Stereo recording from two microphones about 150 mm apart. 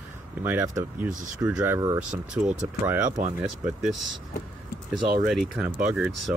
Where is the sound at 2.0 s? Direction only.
5° right (ahead or behind).